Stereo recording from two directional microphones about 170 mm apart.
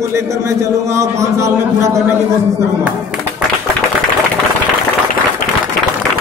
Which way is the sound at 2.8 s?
10° right (ahead or behind).